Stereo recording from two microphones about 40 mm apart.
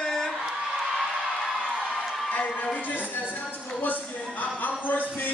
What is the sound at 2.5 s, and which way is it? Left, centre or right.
A man's voice, left.